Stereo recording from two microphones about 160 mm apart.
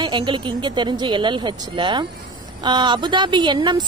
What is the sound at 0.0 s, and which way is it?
Speech, 30° right (ahead or behind).